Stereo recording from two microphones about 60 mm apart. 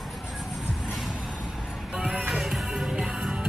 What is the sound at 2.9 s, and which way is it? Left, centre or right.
Music, right.